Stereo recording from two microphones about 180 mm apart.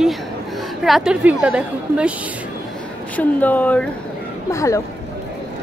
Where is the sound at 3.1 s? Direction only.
10° left (ahead or behind).